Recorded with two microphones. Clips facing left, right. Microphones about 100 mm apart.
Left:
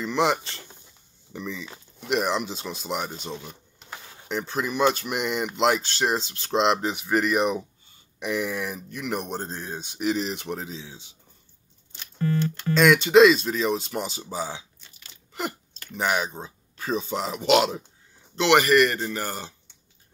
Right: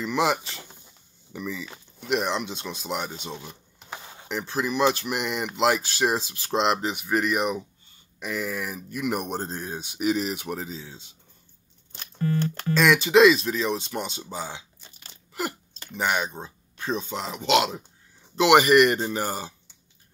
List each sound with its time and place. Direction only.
0.0 s speech: centre (ahead or behind)
3.9 s a sound: 20° right (ahead or behind)
4.3 s speech: 5° right (ahead or behind)
12.7 s speech: 5° right (ahead or behind)
14.8 s crunch: 35° right (ahead or behind)
16.0 s speech: centre (ahead or behind)
18.3 s speech: 10° right (ahead or behind)